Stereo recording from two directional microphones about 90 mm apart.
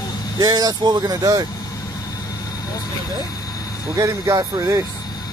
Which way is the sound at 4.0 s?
40° right (ahead or behind).